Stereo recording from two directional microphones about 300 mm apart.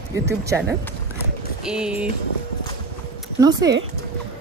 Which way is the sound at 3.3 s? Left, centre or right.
Centre.